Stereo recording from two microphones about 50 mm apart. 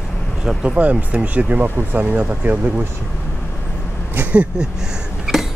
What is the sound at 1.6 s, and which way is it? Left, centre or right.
Speech, right.